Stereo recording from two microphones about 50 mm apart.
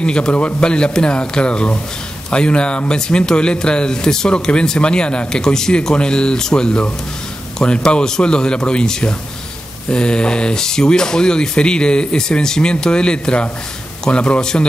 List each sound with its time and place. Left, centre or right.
0.0 s speech: centre